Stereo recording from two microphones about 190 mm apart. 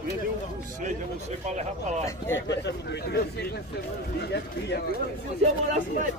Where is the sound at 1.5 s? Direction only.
35° right (ahead or behind).